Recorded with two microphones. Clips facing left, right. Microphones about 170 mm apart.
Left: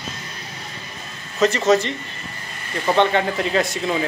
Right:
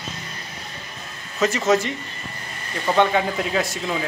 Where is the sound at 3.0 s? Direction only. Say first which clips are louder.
Even; 5° right (ahead or behind).